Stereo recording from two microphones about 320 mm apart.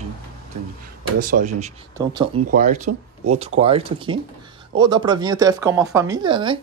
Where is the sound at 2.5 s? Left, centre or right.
Right.